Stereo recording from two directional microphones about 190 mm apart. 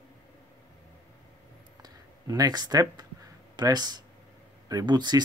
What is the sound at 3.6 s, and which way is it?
Speech, 20° right (ahead or behind).